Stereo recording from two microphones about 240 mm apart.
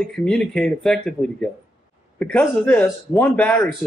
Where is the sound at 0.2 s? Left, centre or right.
Centre.